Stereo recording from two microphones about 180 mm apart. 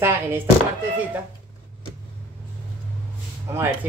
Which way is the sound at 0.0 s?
15° right (ahead or behind).